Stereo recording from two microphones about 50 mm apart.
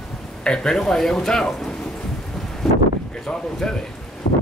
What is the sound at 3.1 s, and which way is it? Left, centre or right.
Speech, centre.